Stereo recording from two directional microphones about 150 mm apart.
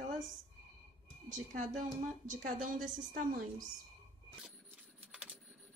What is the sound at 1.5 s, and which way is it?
A woman's voice, 55° right (ahead or behind).